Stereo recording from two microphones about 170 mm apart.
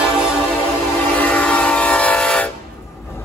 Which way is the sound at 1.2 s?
10° left (ahead or behind).